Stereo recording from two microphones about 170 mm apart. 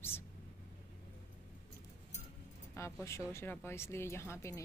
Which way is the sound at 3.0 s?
15° left (ahead or behind).